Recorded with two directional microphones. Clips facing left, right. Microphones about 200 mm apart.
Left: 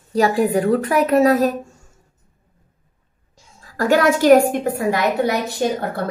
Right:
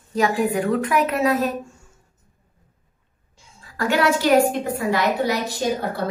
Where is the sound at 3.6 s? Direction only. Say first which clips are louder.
Left 4 dB; 40° left (ahead or behind).